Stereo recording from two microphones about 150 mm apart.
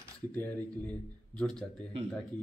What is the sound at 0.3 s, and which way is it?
Speech, 10° left (ahead or behind).